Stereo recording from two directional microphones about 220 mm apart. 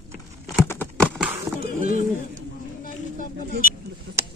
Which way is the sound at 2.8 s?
40° left (ahead or behind).